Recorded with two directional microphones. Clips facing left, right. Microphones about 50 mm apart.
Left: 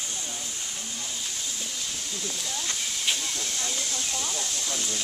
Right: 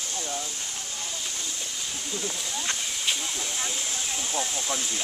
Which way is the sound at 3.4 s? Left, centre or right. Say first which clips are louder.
Right 1 dB; centre.